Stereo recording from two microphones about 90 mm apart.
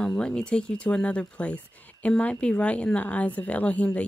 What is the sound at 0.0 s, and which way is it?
Speech, 10° left (ahead or behind).